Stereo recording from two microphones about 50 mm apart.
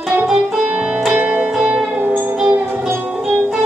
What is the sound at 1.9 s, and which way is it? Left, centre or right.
Music, right.